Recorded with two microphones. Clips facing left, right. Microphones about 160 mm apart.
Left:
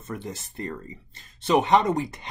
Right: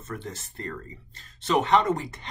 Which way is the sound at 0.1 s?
15° left (ahead or behind).